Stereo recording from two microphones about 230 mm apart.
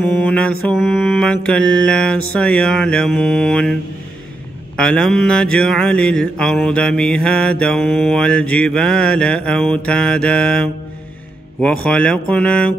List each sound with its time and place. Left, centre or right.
0.2 s mantra: centre
4.7 s mantra: centre